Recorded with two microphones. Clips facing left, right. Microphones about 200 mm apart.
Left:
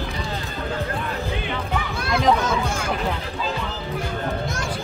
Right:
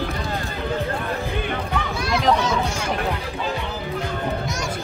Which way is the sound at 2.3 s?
55° left (ahead or behind).